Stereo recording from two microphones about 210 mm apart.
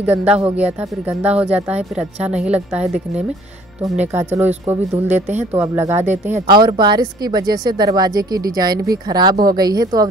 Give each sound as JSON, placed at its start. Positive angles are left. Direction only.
{"t": 0.0, "sound": "a woman's voice", "side_deg": -5}
{"t": 4.1, "sound": "speech", "side_deg": -10}